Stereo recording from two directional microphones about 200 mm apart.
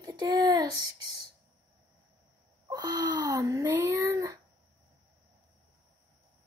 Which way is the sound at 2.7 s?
20° right (ahead or behind).